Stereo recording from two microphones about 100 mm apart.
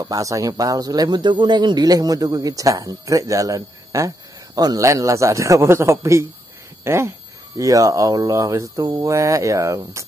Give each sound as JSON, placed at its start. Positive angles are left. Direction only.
{"t": 0.0, "sound": "speech", "side_deg": -35}